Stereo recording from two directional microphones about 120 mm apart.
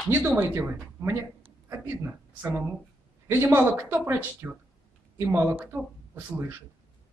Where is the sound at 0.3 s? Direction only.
15° right (ahead or behind).